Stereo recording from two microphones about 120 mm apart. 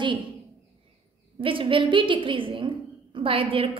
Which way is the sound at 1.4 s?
45° right (ahead or behind).